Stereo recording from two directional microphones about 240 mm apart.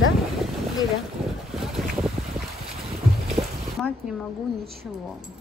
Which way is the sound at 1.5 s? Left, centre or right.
Centre.